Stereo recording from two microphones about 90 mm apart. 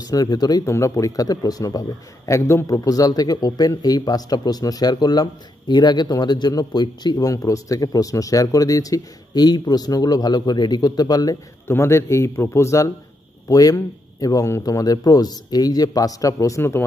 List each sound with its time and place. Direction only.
0.0 s a man's voice: 45° left (ahead or behind)
0.7 s a man's voice: 35° left (ahead or behind)
11.6 s speech: 30° left (ahead or behind)